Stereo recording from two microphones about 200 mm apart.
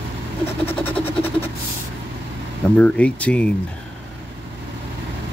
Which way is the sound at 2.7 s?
5° left (ahead or behind).